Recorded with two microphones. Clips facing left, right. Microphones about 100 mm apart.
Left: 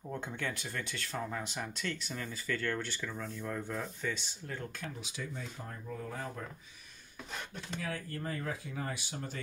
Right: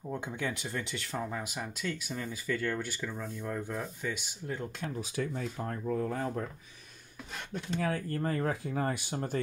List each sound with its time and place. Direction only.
0.0 s speech: 15° right (ahead or behind)
1.3 s speech: 5° right (ahead or behind)
5.0 s speech: 55° right (ahead or behind)
5.9 s speech: 50° right (ahead or behind)
7.8 s speech: 45° right (ahead or behind)